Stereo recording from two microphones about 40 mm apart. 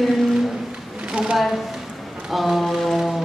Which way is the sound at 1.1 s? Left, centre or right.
Right.